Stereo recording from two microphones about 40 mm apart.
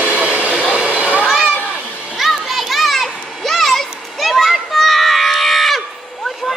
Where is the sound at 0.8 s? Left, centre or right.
Right.